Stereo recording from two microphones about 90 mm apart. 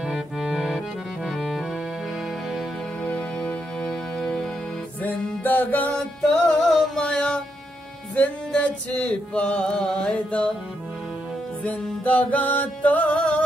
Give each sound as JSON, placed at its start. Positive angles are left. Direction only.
{"t": 0.0, "sound": "accordion", "side_deg": -5}
{"t": 3.0, "sound": "music", "side_deg": 15}
{"t": 5.0, "sound": "music", "side_deg": 20}
{"t": 11.6, "sound": "music", "side_deg": 15}